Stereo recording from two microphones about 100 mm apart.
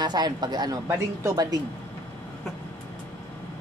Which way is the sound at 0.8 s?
30° right (ahead or behind).